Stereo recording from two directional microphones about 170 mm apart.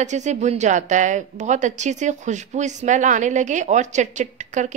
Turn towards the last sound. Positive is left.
turn(degrees=-45)  # may be behind; listen again after turning